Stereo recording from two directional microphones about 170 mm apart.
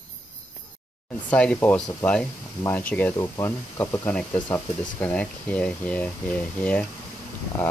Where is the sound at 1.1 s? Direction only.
5° left (ahead or behind).